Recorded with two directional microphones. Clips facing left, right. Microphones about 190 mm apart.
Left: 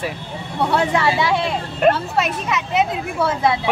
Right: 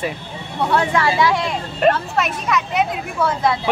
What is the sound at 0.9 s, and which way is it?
Speech, 25° left (ahead or behind).